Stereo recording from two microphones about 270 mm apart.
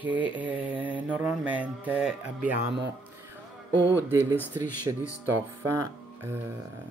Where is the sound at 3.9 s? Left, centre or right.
Centre.